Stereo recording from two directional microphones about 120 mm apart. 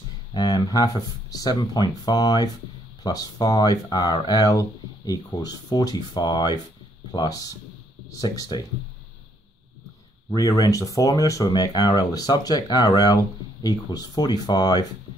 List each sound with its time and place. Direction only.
0.3 s speech: 35° left (ahead or behind)
10.3 s speech: 30° left (ahead or behind)